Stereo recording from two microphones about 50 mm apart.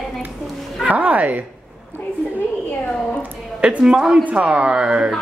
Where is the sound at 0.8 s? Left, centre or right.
Right.